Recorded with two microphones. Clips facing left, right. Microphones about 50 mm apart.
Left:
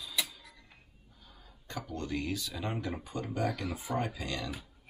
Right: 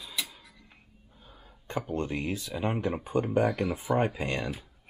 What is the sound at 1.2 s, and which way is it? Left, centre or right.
Speech, right.